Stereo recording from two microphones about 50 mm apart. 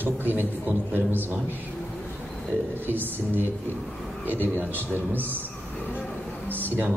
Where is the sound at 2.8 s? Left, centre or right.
Right.